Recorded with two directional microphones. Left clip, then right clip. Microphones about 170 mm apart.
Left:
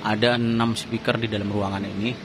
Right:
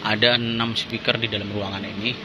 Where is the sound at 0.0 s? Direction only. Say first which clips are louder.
Right 2 dB; 20° left (ahead or behind).